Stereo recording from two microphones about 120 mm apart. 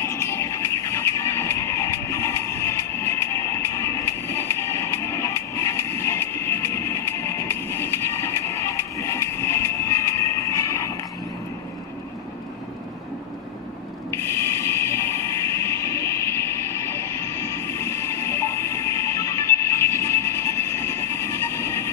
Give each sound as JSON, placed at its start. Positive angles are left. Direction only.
{"t": 0.0, "sound": "music", "side_deg": 25}
{"t": 14.1, "sound": "music", "side_deg": 20}